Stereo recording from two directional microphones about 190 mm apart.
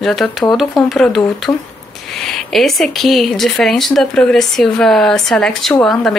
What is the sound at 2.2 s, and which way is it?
Speech, centre (ahead or behind).